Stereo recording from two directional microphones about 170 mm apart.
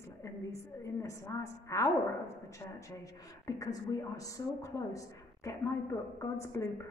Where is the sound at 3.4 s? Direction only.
20° left (ahead or behind).